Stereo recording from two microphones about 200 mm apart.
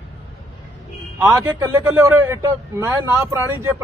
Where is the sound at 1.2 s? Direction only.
10° right (ahead or behind).